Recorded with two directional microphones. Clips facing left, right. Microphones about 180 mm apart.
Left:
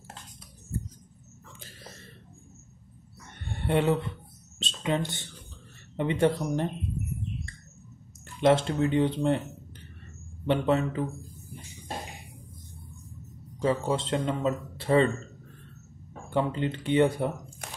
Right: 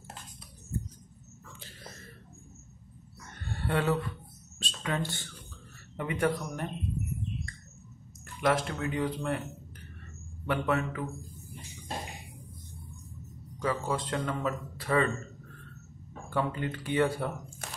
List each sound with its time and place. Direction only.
3.4 s speech: 20° left (ahead or behind)
8.4 s speech: 25° left (ahead or behind)
10.4 s speech: 25° left (ahead or behind)
13.6 s speech: 25° left (ahead or behind)
16.3 s speech: 20° left (ahead or behind)